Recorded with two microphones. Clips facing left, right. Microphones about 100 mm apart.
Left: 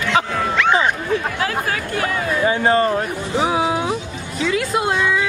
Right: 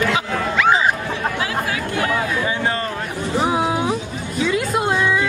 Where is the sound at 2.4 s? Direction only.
35° left (ahead or behind).